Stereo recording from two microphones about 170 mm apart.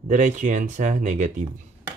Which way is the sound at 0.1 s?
45° right (ahead or behind).